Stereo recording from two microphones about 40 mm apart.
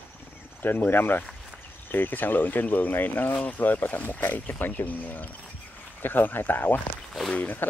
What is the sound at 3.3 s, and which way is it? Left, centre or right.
Speech, left.